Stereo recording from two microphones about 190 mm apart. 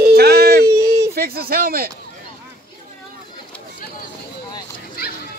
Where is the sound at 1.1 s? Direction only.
55° right (ahead or behind).